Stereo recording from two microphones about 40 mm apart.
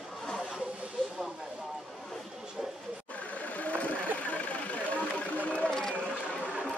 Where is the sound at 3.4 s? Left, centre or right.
Left.